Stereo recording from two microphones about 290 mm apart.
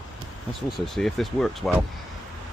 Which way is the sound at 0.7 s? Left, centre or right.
Centre.